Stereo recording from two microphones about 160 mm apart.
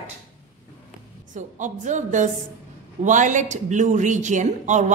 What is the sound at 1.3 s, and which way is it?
Speech, 50° right (ahead or behind).